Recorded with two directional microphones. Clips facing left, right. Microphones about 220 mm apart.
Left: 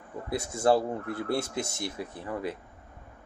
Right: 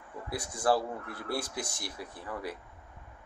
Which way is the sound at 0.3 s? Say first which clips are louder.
Left 4 dB; 25° left (ahead or behind).